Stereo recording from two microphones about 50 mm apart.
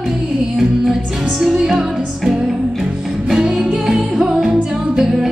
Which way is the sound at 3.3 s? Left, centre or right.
Centre.